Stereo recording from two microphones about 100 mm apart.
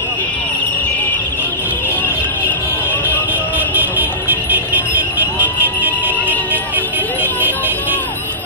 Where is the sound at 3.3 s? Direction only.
20° right (ahead or behind).